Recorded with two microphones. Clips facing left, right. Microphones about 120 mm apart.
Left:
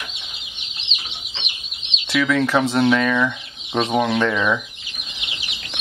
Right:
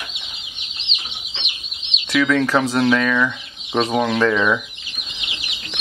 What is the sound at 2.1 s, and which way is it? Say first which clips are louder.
Speech: right 1 dB; 5° left (ahead or behind).